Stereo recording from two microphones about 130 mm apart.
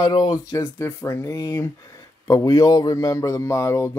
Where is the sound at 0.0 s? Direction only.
30° left (ahead or behind).